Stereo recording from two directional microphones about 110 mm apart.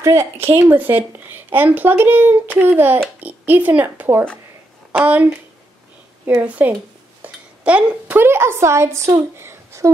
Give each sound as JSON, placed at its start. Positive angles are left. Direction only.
{"t": 0.0, "sound": "speech", "side_deg": -25}
{"t": 6.4, "sound": "a woman's voice", "side_deg": -15}